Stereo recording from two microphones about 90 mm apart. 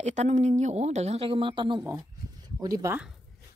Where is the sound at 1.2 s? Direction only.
75° right (ahead or behind).